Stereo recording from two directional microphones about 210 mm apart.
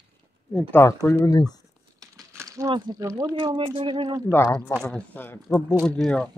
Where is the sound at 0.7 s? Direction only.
10° left (ahead or behind).